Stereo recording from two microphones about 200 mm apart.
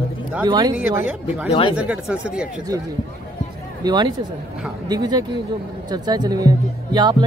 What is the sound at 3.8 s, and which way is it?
Speech, 20° right (ahead or behind).